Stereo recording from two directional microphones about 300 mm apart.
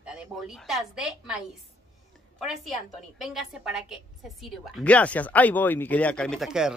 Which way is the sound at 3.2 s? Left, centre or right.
Centre.